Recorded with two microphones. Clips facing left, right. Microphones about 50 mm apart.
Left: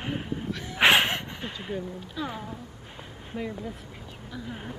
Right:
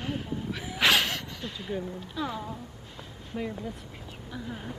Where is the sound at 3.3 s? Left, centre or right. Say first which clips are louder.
Even; centre.